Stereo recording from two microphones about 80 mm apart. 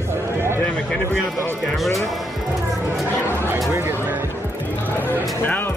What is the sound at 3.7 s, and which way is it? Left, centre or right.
Speech, right.